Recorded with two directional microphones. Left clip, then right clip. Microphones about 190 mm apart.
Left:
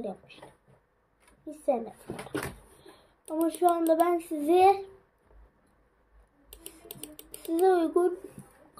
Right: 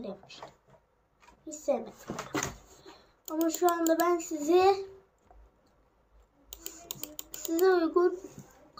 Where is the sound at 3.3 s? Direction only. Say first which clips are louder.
Left 2 dB; centre (ahead or behind).